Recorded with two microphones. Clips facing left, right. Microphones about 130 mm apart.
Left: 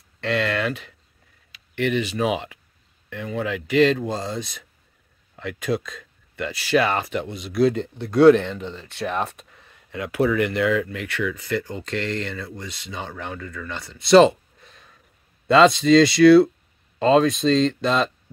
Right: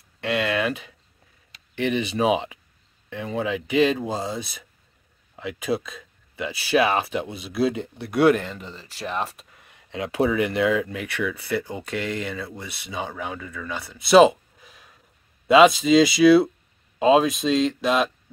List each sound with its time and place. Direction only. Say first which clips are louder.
0.2 s speech: even; 15° right (ahead or behind)
9.8 s speech: left 1 dB; 20° right (ahead or behind); by 18.1 s 5° right (ahead or behind)